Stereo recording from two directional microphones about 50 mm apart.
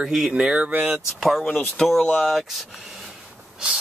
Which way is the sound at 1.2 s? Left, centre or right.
Centre.